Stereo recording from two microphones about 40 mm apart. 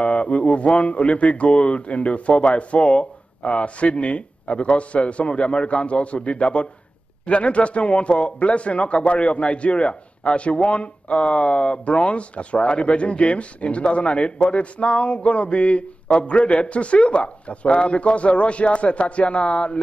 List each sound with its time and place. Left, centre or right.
0.0 s a man's voice: left